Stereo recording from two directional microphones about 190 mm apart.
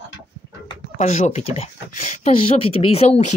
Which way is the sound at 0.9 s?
35° left (ahead or behind).